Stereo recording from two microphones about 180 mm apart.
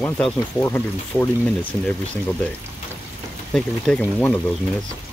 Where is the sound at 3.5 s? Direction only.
5° left (ahead or behind).